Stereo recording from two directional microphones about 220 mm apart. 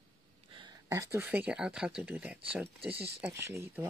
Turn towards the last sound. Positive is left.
turn(degrees=-10)  # may be behind; listen again after turning